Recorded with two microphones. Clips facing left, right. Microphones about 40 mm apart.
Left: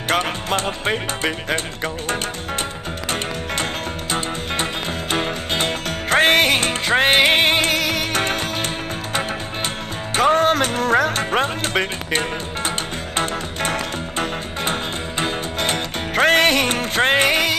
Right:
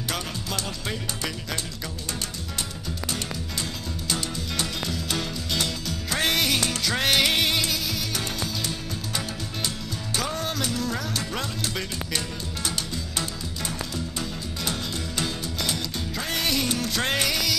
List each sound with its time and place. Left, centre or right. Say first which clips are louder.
0.1 s music: left 12 dB; left
4.1 s music: left 6 dB; left